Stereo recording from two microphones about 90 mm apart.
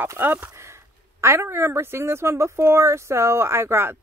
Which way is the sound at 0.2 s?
20° right (ahead or behind).